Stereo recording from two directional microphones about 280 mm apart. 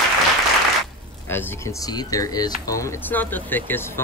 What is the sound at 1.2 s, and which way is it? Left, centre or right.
Speech, centre.